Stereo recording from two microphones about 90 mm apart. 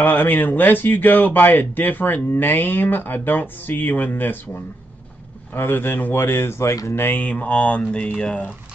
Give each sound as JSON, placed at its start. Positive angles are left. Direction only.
{"t": 0.0, "sound": "speech", "side_deg": 20}
{"t": 5.5, "sound": "speech", "side_deg": 20}
{"t": 7.0, "sound": "a sound", "side_deg": 20}